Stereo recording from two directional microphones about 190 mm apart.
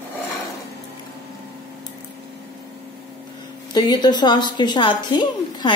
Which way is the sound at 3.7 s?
20° left (ahead or behind).